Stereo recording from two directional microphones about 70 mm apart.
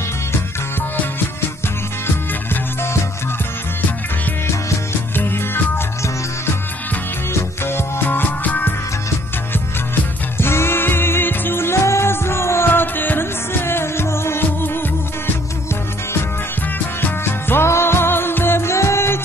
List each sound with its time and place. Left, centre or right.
2.5 s music: left
5.1 s music: left
7.3 s music: left
10.3 s music: left
16.7 s music: left